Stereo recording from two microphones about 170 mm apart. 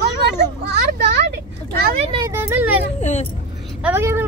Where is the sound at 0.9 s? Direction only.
90° right.